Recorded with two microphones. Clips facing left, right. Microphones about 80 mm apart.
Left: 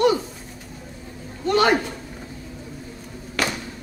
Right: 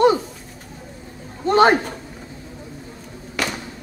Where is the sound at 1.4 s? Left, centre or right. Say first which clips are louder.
Right 4 dB; right.